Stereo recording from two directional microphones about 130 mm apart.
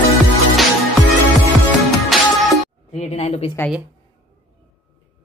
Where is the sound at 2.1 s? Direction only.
Centre (ahead or behind).